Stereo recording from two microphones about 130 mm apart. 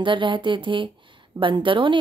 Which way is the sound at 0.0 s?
40° right (ahead or behind).